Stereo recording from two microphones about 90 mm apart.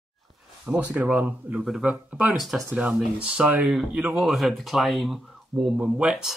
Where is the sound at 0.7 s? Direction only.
15° right (ahead or behind); by 5.7 s centre (ahead or behind).